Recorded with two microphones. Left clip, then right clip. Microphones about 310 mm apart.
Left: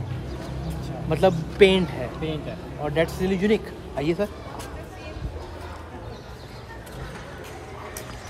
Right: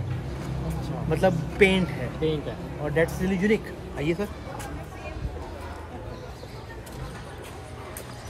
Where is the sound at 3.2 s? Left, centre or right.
Centre.